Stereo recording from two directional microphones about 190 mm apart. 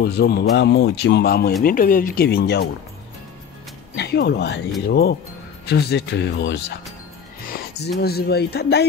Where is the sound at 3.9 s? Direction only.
60° left (ahead or behind).